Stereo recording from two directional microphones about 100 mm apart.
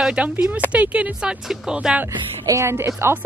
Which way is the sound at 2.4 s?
30° right (ahead or behind).